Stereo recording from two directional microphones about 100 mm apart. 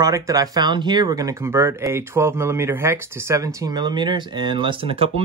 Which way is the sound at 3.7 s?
50° right (ahead or behind).